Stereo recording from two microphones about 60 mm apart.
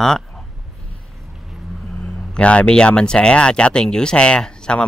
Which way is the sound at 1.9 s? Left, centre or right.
Left.